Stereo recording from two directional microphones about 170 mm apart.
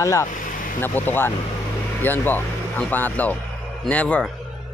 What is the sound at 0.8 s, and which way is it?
Speech, 10° left (ahead or behind).